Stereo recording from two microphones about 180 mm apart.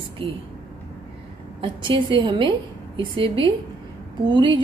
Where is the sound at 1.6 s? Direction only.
25° right (ahead or behind).